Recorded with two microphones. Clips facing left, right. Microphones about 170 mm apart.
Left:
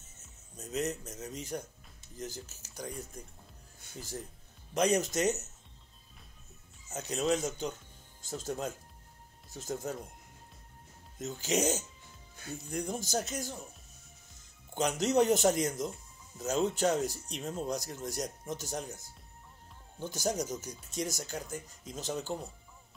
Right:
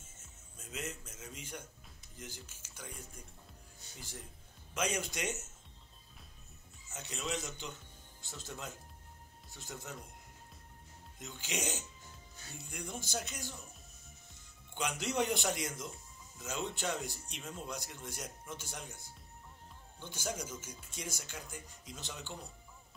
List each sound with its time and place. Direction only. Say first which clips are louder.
0.6 s speech: left 9 dB; 40° left (ahead or behind)
6.9 s speech: left 10 dB; 40° left (ahead or behind)
11.1 s speech: left 10 dB; 40° left (ahead or behind)
14.7 s speech: left 8 dB; 40° left (ahead or behind)